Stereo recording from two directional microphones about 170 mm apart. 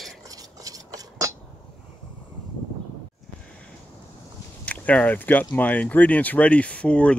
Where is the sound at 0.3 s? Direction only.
20° right (ahead or behind).